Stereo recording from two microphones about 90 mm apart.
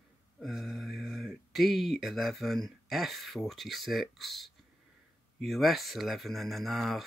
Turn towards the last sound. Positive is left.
turn(degrees=0)  # may be behind; listen again after turning